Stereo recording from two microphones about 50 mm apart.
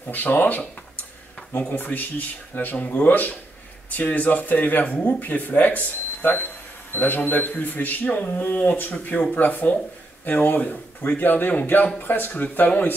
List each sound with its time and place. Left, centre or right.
0.1 s speech: left
1.8 s speech: left